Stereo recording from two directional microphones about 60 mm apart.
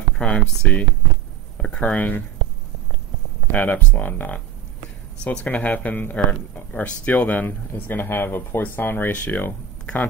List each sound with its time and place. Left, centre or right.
0.2 s speech: centre
3.5 s speech: left
9.1 s speech: left